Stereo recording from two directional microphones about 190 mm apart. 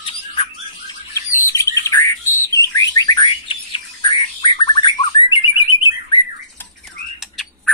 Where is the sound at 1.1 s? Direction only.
15° left (ahead or behind).